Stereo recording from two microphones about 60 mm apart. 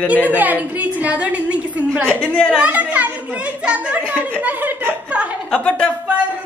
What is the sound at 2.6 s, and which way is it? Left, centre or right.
A woman's voice, right.